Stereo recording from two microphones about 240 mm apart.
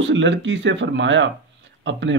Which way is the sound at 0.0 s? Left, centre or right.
Right.